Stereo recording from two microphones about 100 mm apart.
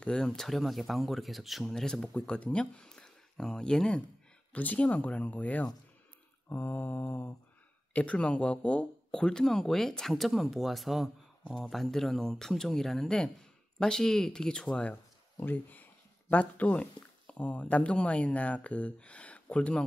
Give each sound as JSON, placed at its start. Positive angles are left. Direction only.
{"t": 0.0, "sound": "speech", "side_deg": 5}
{"t": 6.5, "sound": "mantra", "side_deg": 20}
{"t": 7.9, "sound": "speech", "side_deg": 15}